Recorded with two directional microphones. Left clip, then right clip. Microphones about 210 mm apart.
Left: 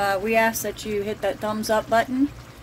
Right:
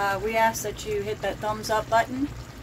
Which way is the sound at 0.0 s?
50° left (ahead or behind).